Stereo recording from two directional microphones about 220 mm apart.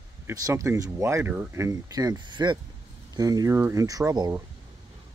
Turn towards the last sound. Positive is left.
turn(degrees=-15)  # may be behind; listen again after turning